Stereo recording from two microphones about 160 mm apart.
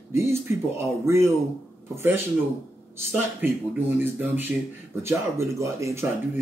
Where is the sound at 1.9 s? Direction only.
15° right (ahead or behind).